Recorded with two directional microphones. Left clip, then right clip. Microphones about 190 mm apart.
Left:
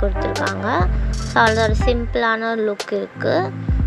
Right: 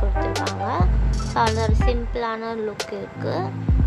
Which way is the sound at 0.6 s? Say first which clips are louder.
Left 4 dB; 20° left (ahead or behind).